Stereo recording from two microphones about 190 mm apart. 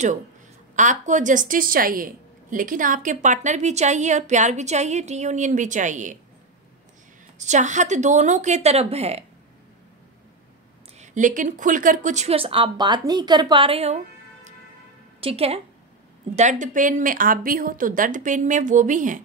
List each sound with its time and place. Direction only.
0.7 s a woman's voice: 40° right (ahead or behind)
7.3 s a woman's voice: 40° right (ahead or behind)
11.0 s a woman's voice: 40° right (ahead or behind)
15.1 s a woman's voice: 30° right (ahead or behind)